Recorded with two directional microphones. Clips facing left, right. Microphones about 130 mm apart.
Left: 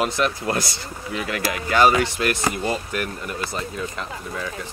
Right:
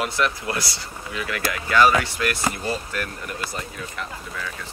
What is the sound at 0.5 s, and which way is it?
Speech, 50° left (ahead or behind).